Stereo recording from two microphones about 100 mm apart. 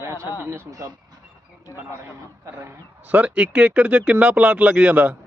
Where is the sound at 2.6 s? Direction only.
15° right (ahead or behind).